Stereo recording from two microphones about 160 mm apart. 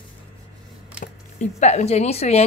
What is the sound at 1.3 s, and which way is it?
Speech, 45° left (ahead or behind).